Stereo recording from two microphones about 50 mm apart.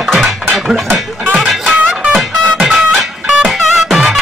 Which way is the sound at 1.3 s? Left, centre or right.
Centre.